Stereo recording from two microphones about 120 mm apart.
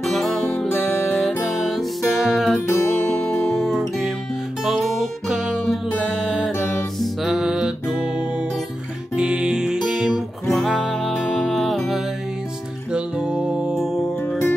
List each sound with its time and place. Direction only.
0.0 s music: centre (ahead or behind)
2.7 s music: 20° left (ahead or behind)
3.3 s music: centre (ahead or behind)
7.0 s music: 5° right (ahead or behind)
9.1 s music: 10° right (ahead or behind)